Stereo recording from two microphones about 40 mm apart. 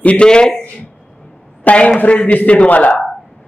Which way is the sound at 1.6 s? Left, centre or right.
Left.